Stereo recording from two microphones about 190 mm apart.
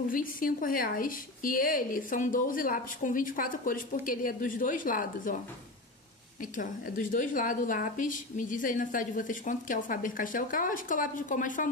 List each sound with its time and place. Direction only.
0.1 s speech: 45° left (ahead or behind)
6.4 s speech: 45° left (ahead or behind)